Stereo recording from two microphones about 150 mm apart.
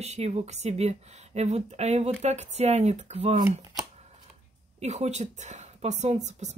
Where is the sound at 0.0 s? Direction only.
45° right (ahead or behind).